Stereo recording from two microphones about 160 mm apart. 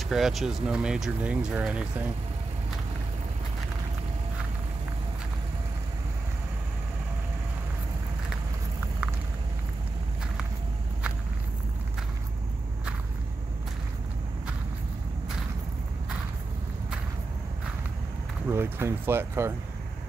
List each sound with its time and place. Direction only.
0.1 s speech: centre (ahead or behind)
18.5 s speech: 15° right (ahead or behind)